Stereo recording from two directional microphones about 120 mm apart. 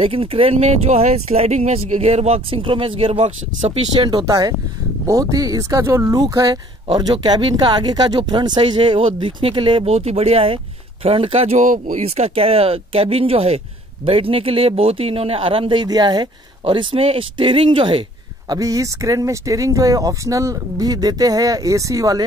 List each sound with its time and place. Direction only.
0.0 s speech: 50° right (ahead or behind)
4.3 s speech: 30° right (ahead or behind); by 9.8 s 45° right (ahead or behind)
9.8 s speech: 60° right (ahead or behind); by 12.0 s 90° right
12.0 s speech: 55° right (ahead or behind)
18.5 s speech: 30° right (ahead or behind)